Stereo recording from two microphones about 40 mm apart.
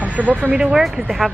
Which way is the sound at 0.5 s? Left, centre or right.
Centre.